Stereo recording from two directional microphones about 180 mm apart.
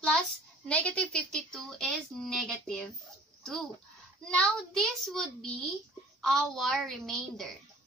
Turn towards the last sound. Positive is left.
turn(degrees=0)  # may be behind; listen again after turning